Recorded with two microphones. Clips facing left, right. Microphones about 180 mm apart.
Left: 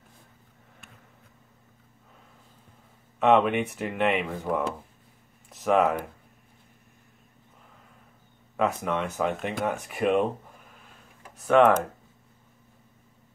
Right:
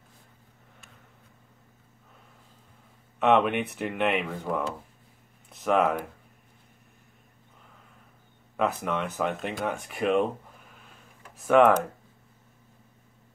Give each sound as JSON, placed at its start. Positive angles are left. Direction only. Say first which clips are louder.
{"t": 3.2, "sound": "speech", "louder": "left 1 dB", "side_deg": 0}
{"t": 8.5, "sound": "speech", "louder": "left 1 dB", "side_deg": 0}
{"t": 11.4, "sound": "speech", "louder": "even", "side_deg": 0}